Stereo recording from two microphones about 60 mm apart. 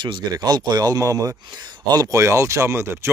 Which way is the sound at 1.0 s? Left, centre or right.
Right.